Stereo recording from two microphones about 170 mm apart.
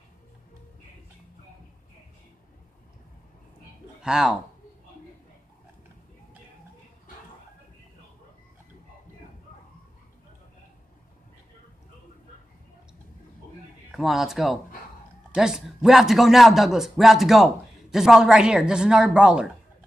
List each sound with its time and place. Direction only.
4.0 s speech: 5° right (ahead or behind)
13.9 s speech: centre (ahead or behind)